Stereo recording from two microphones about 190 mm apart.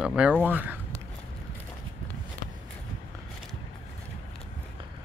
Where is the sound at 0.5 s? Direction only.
10° right (ahead or behind).